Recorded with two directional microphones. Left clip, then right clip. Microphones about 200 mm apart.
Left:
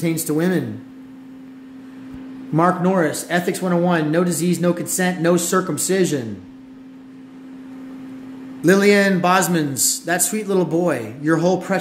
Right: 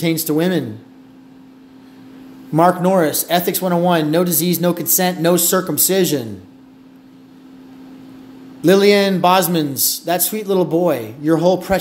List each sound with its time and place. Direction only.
0.0 s speech: 10° right (ahead or behind)
2.5 s speech: 15° right (ahead or behind)
8.5 s speech: 10° right (ahead or behind)